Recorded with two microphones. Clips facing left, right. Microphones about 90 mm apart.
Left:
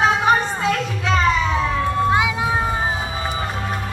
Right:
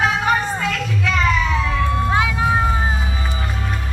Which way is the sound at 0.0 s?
25° left (ahead or behind).